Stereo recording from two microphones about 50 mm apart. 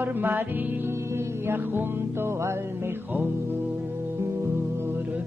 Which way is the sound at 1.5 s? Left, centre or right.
Right.